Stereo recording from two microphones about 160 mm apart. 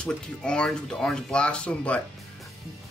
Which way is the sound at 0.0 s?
5° left (ahead or behind).